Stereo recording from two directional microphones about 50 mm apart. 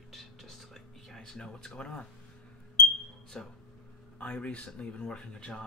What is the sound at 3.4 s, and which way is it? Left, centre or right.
Speech, centre.